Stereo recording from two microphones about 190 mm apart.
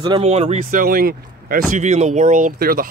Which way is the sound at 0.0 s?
30° right (ahead or behind).